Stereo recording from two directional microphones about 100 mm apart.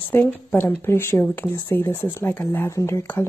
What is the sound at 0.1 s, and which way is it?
Speech, 20° left (ahead or behind).